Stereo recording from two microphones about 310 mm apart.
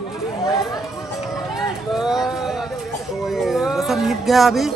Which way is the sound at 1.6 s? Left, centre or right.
Centre.